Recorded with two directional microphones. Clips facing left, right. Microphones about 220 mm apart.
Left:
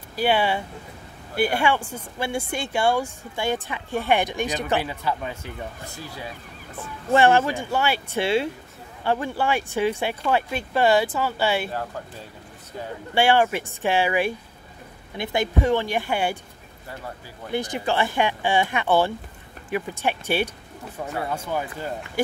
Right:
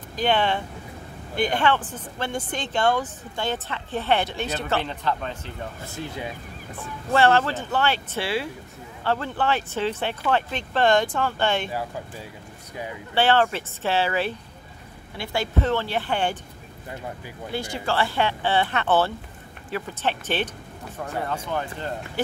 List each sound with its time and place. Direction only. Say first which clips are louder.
0.1 s speech: left 1 dB; 10° left (ahead or behind)
5.9 s speech: right 7 dB; 20° right (ahead or behind)
7.1 s speech: left 2 dB; 15° left (ahead or behind)
13.1 s speech: left 1 dB; 15° left (ahead or behind)
17.5 s speech: left 3 dB; 15° left (ahead or behind)